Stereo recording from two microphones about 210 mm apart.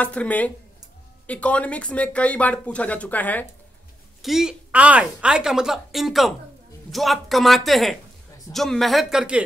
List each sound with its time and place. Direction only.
0.0 s speech: 5° left (ahead or behind)